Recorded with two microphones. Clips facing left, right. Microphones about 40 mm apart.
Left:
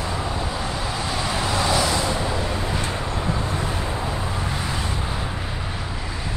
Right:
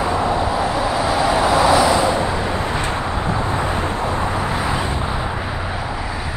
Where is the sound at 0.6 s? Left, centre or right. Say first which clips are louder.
Right 8 dB; centre.